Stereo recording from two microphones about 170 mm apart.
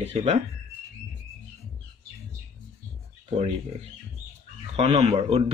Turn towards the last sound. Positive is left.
turn(degrees=-35)  # may be behind; listen again after turning